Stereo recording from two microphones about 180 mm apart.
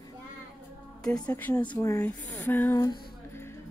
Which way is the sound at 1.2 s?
10° left (ahead or behind).